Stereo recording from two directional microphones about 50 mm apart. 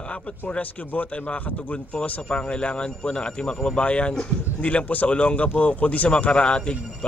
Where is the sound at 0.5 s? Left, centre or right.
Left.